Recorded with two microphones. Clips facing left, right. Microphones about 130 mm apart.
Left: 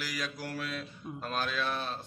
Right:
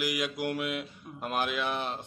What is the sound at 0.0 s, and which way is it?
Speech, 20° right (ahead or behind).